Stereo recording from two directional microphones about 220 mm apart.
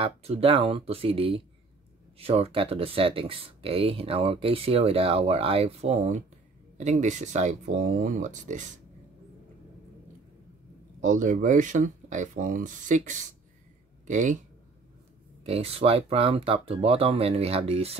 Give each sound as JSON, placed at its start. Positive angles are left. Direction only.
{"t": 0.0, "sound": "speech", "side_deg": -25}
{"t": 11.0, "sound": "speech", "side_deg": -35}
{"t": 15.4, "sound": "speech", "side_deg": -25}